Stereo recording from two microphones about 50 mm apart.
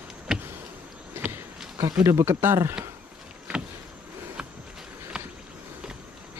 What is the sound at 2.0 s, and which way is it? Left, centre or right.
Speech, right.